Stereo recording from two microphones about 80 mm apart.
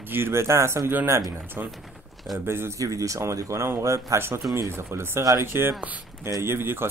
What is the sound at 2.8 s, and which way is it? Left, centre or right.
Speech, right.